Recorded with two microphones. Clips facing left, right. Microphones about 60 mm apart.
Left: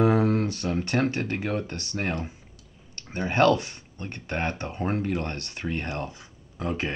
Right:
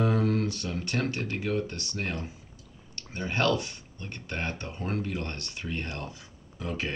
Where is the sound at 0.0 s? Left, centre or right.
Left.